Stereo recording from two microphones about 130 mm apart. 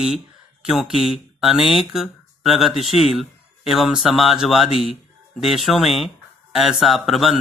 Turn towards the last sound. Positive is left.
turn(degrees=0)  # may be behind; listen again after turning